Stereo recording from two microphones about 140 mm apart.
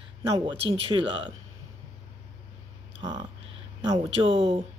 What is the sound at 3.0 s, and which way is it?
Speech, 35° right (ahead or behind).